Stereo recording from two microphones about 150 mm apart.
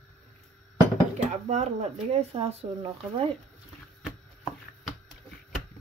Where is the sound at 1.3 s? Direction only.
50° right (ahead or behind).